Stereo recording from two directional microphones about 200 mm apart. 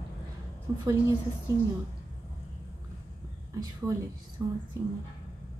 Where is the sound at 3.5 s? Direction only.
15° right (ahead or behind).